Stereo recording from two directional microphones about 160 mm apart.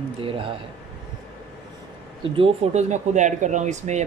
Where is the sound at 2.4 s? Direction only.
40° right (ahead or behind).